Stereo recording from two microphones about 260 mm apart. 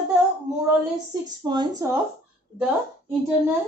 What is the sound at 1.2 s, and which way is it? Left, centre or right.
Speech, centre.